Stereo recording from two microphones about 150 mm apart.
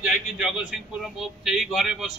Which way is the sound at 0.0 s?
5° right (ahead or behind).